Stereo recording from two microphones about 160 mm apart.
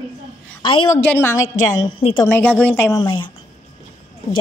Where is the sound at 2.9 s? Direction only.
30° left (ahead or behind).